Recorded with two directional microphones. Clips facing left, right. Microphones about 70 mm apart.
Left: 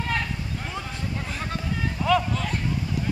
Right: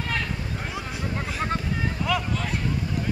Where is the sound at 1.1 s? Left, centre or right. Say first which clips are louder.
Right 6 dB; right.